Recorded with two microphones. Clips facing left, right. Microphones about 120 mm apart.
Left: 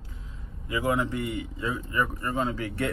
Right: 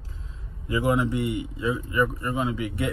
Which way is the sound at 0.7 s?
20° right (ahead or behind).